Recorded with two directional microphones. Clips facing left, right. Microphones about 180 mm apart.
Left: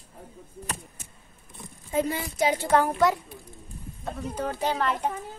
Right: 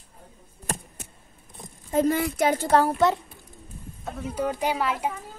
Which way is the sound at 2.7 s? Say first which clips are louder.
Right 1 dB; 30° right (ahead or behind).